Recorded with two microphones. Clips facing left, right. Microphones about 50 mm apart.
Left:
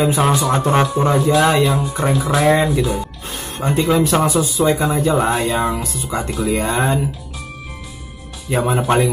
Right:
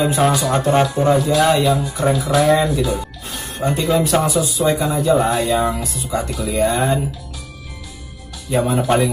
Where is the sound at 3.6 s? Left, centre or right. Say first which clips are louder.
Left 1 dB; left.